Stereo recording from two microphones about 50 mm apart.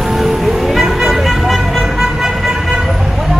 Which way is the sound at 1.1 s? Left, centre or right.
Centre.